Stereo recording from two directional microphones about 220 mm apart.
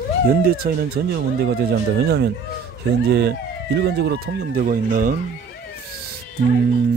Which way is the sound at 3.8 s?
50° right (ahead or behind).